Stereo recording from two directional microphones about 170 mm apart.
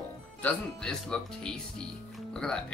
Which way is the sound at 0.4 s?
5° left (ahead or behind).